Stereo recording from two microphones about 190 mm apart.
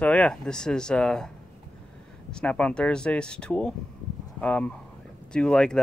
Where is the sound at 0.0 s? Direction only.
5° left (ahead or behind).